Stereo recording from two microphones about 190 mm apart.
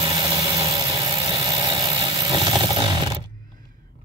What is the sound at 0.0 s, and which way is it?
Vehicle, 15° right (ahead or behind).